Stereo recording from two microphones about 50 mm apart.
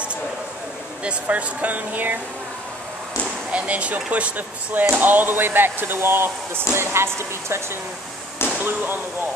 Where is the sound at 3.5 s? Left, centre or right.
Right.